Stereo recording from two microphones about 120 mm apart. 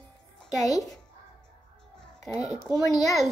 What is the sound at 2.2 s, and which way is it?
Speech, 30° left (ahead or behind).